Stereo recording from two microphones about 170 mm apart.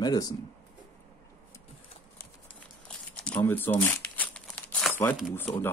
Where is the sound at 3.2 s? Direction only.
10° left (ahead or behind).